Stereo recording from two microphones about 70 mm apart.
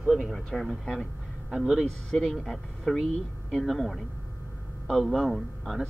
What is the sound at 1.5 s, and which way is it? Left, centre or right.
Speech, centre.